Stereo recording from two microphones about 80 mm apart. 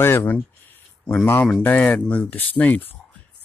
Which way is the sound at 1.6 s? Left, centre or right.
Left.